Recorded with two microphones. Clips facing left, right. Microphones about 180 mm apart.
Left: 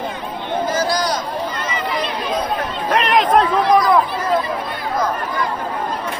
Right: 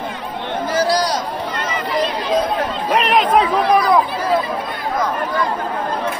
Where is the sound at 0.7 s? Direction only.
35° right (ahead or behind).